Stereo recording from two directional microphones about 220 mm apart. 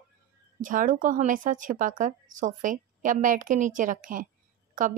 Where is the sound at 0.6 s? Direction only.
35° right (ahead or behind).